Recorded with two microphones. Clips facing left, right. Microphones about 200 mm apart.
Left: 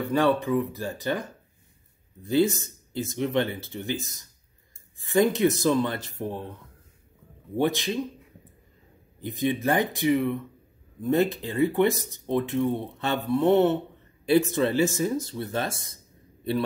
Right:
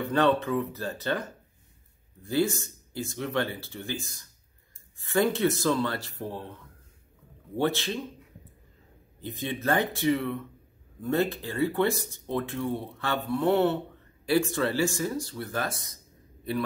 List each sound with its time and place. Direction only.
0.1 s speech: 10° left (ahead or behind)
2.2 s speech: 20° left (ahead or behind)
9.2 s speech: 15° left (ahead or behind)